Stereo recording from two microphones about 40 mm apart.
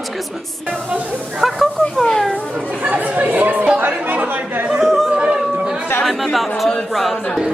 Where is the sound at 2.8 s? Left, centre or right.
Right.